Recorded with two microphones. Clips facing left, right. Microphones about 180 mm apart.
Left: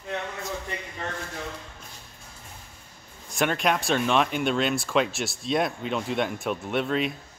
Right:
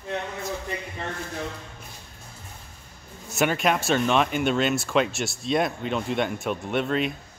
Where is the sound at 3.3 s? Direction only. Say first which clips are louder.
Right 2 dB; 5° right (ahead or behind).